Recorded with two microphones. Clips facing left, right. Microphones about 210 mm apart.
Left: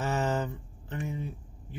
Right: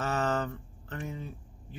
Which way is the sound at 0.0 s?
15° left (ahead or behind).